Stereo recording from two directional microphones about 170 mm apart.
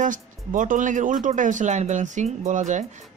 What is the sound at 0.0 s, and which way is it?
Speech, 50° right (ahead or behind).